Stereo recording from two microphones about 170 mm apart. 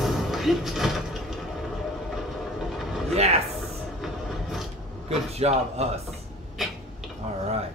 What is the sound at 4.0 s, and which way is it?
Train, centre (ahead or behind).